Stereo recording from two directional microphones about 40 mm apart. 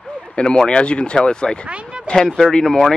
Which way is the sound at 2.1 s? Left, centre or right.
Left.